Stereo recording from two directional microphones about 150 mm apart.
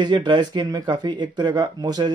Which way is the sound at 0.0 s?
30° right (ahead or behind).